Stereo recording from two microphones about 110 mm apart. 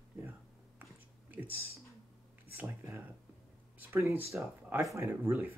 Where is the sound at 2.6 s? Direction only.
25° right (ahead or behind).